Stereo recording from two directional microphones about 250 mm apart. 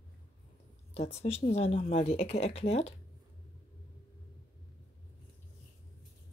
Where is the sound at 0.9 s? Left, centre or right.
Left.